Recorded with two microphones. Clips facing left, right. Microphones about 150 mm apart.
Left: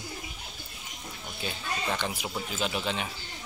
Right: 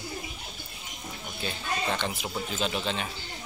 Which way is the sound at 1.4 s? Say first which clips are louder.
Right 2 dB; 10° left (ahead or behind).